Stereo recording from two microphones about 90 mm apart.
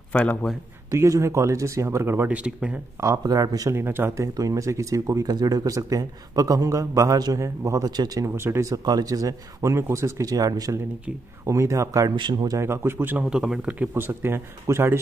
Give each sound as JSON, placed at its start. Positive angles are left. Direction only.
{"t": 0.1, "sound": "a man's voice", "side_deg": 15}
{"t": 0.8, "sound": "speech", "side_deg": -35}
{"t": 2.3, "sound": "speech", "side_deg": -15}
{"t": 3.0, "sound": "speech", "side_deg": -40}
{"t": 3.7, "sound": "speech", "side_deg": -25}
{"t": 8.3, "sound": "speech", "side_deg": -25}
{"t": 12.2, "sound": "speech", "side_deg": -55}
{"t": 12.5, "sound": "speech", "side_deg": -30}
{"t": 13.2, "sound": "speech", "side_deg": -5}
{"t": 13.7, "sound": "speech", "side_deg": -25}